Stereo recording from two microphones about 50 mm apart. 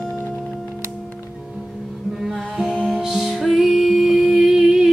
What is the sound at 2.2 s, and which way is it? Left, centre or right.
Music, centre.